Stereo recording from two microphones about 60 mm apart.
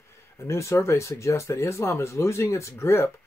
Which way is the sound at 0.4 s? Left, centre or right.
Left.